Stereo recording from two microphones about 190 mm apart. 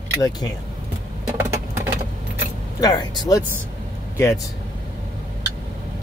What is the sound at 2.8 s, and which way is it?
Speech, 20° left (ahead or behind).